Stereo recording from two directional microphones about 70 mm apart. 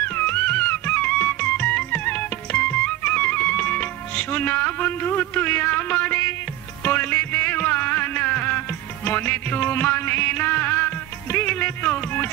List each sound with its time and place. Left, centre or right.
0.0 s music: left